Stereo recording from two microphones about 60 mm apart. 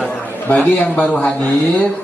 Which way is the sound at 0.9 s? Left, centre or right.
Left.